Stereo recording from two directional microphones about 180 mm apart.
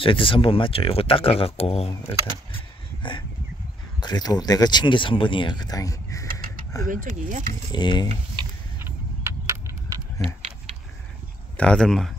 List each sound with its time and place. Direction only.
0.0 s speech: 30° left (ahead or behind)
6.9 s speech: 45° right (ahead or behind)
7.7 s speech: 25° left (ahead or behind)
8.7 s a sound: 15° right (ahead or behind)
11.5 s speech: 5° left (ahead or behind)